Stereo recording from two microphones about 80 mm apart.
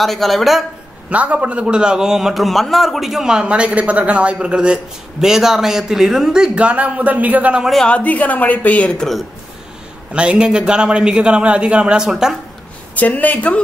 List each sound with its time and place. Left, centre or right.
0.0 s speech: centre
1.1 s a man's voice: centre
7.6 s speech: centre
7.9 s a woman's voice: centre
10.1 s a man's voice: centre
12.9 s a woman's voice: centre